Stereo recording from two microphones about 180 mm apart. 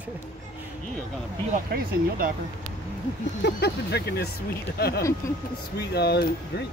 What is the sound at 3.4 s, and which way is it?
Speech, 65° left (ahead or behind).